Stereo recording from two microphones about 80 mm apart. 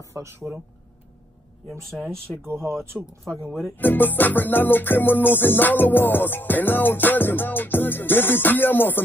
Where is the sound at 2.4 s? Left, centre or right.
Right.